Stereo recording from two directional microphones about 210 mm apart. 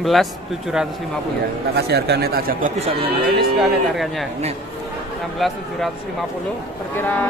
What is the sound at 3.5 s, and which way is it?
Speech, centre (ahead or behind).